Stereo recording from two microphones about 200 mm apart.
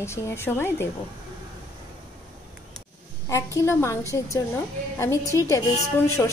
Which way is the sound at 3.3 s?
15° left (ahead or behind).